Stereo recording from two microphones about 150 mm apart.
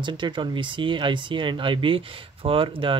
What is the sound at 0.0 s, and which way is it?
Speech, 30° right (ahead or behind).